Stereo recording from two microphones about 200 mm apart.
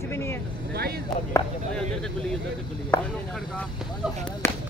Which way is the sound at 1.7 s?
5° left (ahead or behind).